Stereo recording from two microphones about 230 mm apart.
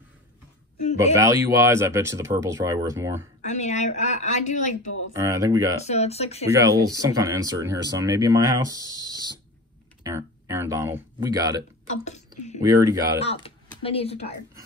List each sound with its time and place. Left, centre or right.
1.1 s speech: centre
3.4 s a woman's voice: left
5.1 s speech: centre
5.9 s speech: left
6.5 s speech: centre
11.9 s speech: left
12.6 s speech: centre
13.2 s speech: left